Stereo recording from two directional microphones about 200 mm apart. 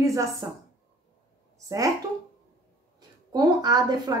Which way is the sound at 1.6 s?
15° right (ahead or behind).